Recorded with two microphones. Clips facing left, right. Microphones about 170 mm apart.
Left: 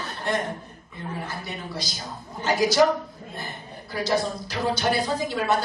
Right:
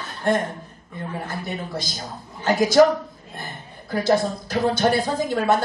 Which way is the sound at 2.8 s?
50° right (ahead or behind).